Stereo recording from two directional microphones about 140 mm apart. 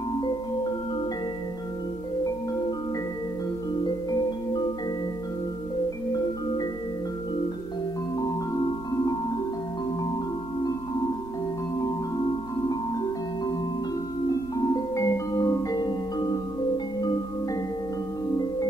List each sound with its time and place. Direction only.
3.8 s music: 30° left (ahead or behind)
14.2 s music: 25° left (ahead or behind)